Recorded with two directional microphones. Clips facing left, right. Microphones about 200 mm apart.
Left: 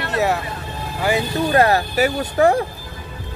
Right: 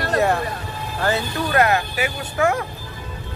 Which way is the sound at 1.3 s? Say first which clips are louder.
Left 4 dB; 25° left (ahead or behind).